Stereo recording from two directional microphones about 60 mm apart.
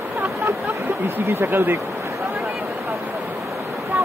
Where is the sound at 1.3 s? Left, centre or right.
Right.